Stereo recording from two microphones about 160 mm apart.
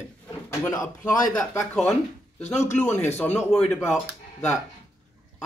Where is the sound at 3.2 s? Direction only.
5° left (ahead or behind).